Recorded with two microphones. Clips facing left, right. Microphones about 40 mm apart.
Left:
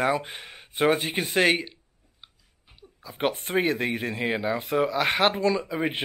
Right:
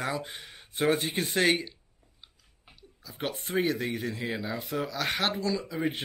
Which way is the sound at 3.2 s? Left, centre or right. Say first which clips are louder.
Left 5 dB; left.